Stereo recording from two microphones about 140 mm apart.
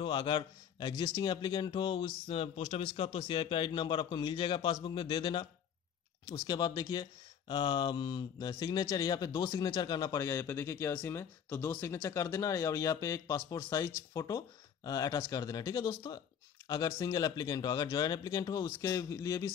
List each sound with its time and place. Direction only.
0.0 s a man's voice: 40° left (ahead or behind); by 19.5 s 20° left (ahead or behind)